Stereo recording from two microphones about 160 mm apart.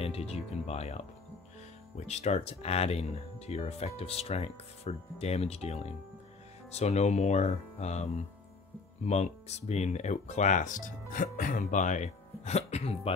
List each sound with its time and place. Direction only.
0.0 s speech: 40° left (ahead or behind)